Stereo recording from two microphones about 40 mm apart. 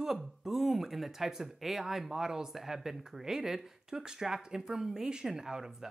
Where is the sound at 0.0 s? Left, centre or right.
Centre.